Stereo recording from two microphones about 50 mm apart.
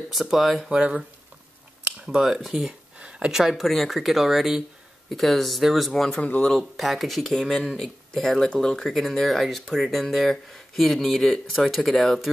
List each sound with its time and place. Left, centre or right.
0.1 s speech: centre
0.7 s speech: right
2.0 s speech: centre
3.0 s a sound: right
3.3 s speech: centre
6.2 s speech: left
6.8 s speech: centre